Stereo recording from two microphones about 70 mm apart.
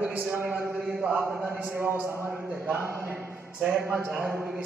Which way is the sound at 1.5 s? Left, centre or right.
Right.